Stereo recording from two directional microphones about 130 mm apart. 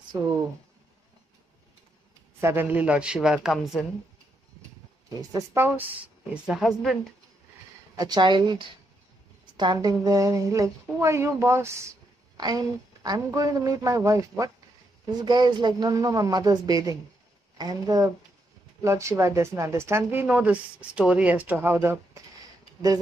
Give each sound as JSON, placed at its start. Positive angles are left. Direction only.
{"t": 0.1, "sound": "speech", "side_deg": -30}
{"t": 2.4, "sound": "a man's voice", "side_deg": -15}
{"t": 5.3, "sound": "speech", "side_deg": -20}
{"t": 6.3, "sound": "a woman's voice", "side_deg": -5}
{"t": 7.9, "sound": "speech", "side_deg": -30}